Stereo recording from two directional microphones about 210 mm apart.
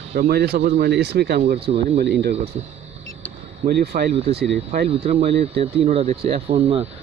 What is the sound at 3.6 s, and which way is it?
Speech, 50° right (ahead or behind).